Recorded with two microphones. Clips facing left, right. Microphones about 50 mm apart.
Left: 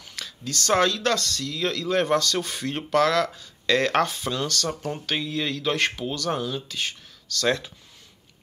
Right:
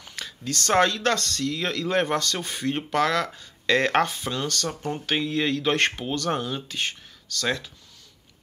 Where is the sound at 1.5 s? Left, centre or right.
Right.